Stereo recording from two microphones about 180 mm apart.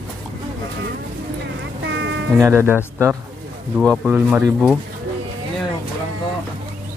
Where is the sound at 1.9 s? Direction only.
90° right.